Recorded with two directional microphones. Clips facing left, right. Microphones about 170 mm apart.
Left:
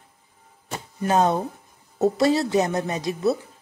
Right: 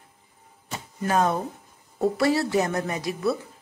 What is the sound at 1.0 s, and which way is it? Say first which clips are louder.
A woman's voice: left 3 dB; 25° left (ahead or behind).